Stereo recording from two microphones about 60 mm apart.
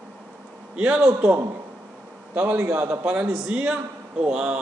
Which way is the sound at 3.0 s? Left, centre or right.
Right.